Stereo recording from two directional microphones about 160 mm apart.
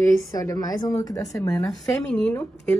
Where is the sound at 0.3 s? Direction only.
20° left (ahead or behind).